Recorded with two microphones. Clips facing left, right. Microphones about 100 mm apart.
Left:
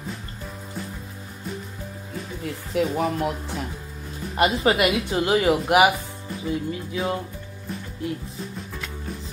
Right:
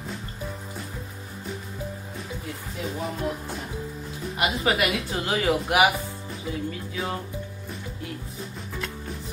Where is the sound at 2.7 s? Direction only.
80° left.